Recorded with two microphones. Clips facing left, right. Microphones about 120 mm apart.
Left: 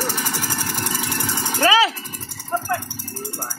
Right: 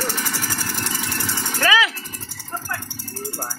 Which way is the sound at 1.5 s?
30° left (ahead or behind).